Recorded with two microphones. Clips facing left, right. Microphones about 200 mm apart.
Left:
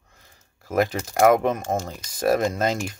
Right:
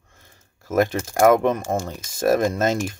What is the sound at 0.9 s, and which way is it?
Speech, 50° right (ahead or behind).